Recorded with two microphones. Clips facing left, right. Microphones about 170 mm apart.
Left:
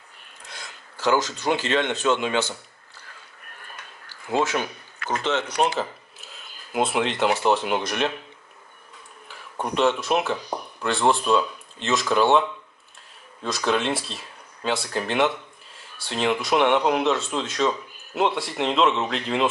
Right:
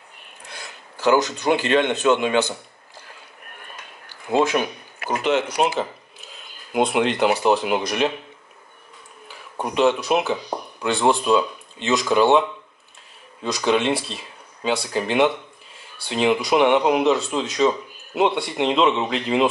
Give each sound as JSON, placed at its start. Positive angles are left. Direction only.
{"t": 0.7, "sound": "a sound", "side_deg": -15}
{"t": 1.4, "sound": "speech", "side_deg": -15}
{"t": 4.3, "sound": "speech", "side_deg": -15}
{"t": 9.3, "sound": "speech", "side_deg": 0}